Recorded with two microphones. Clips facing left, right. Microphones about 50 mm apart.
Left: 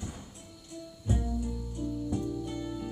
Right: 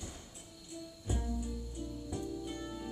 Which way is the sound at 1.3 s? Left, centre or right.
Left.